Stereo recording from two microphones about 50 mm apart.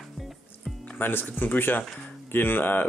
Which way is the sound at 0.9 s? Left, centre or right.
Left.